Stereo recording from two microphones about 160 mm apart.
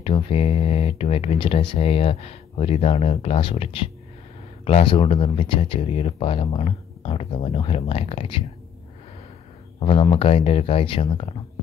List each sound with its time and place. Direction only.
0.0 s speech: 40° left (ahead or behind)
9.8 s speech: 35° left (ahead or behind)